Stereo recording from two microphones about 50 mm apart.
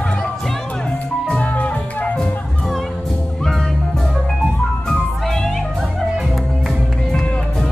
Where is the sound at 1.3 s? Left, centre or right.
Left.